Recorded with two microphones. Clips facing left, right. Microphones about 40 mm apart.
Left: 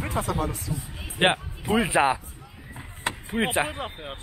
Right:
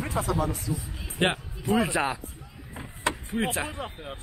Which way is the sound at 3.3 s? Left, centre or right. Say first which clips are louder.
Left 4 dB; left.